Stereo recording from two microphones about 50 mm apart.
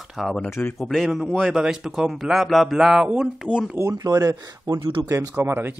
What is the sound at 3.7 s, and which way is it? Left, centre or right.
Speech, right.